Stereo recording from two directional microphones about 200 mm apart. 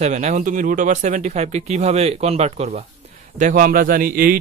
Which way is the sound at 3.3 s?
40° right (ahead or behind).